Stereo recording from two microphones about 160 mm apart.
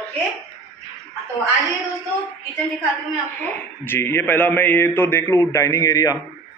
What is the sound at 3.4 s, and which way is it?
A man's voice, 10° left (ahead or behind).